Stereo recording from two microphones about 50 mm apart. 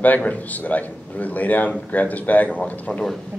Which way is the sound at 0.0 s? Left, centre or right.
Left.